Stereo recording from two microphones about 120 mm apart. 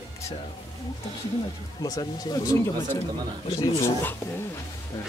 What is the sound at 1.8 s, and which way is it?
Speech, 30° left (ahead or behind).